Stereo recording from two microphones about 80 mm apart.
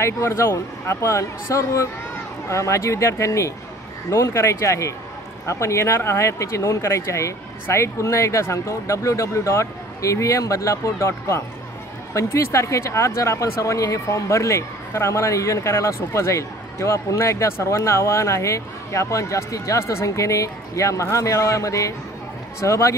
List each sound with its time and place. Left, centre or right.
0.0 s speech: left